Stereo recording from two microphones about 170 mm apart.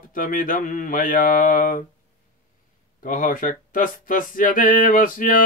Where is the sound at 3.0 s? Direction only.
55° left (ahead or behind).